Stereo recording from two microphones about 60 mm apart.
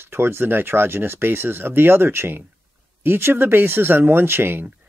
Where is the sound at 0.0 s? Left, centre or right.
Right.